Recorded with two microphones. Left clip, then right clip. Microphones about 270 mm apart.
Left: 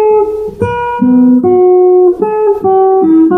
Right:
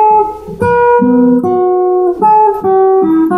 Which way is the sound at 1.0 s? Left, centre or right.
Right.